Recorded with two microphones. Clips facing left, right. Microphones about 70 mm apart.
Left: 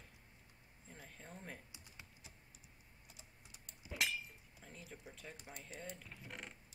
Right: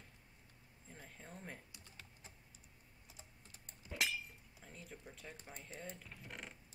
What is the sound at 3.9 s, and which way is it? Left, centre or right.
Breaking, centre.